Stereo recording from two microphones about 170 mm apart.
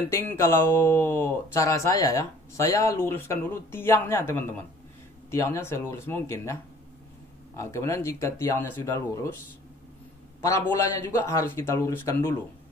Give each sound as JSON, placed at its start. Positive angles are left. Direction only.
{"t": 0.1, "sound": "speech", "side_deg": 15}
{"t": 10.4, "sound": "speech", "side_deg": 20}